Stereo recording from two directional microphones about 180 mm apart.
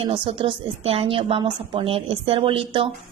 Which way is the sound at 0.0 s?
30° right (ahead or behind).